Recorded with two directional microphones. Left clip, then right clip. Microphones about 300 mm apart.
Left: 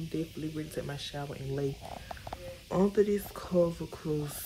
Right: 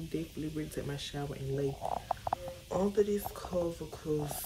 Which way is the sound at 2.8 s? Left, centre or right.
Centre.